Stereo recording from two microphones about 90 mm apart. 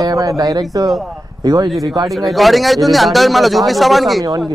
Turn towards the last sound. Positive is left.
turn(degrees=0)  # may be behind; listen again after turning